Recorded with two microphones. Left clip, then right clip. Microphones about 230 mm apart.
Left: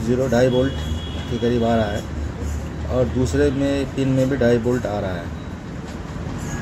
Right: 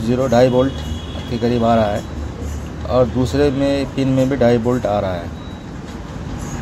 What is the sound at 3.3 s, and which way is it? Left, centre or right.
Speech, centre.